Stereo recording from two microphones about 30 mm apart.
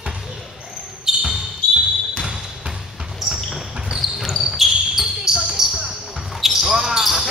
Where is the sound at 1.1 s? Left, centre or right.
Centre.